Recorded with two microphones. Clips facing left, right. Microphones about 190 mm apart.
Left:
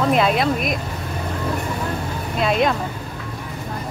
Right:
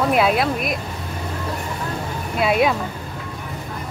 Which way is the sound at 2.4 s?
5° right (ahead or behind).